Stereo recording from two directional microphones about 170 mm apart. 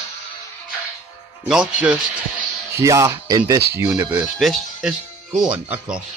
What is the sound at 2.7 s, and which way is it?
Speech, 20° right (ahead or behind).